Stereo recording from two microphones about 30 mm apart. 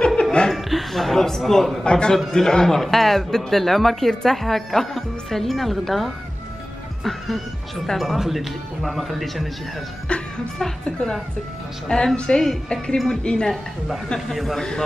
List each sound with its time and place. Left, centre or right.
0.2 s chuckle: left
0.6 s a sound: centre
1.5 s a woman's voice: centre
1.9 s a woman's voice: left
2.8 s speech: centre
3.5 s speech: centre
4.1 s a woman's voice: left
4.4 s a woman's voice: centre
8.2 s a woman's voice: centre
10.0 s chuckle: left
10.6 s a woman's voice: centre
13.2 s a woman's voice: left
14.3 s a woman's voice: centre
14.6 s a woman's voice: centre